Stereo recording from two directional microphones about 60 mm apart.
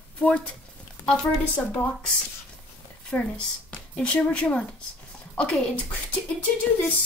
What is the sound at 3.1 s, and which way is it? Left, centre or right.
Speech, centre.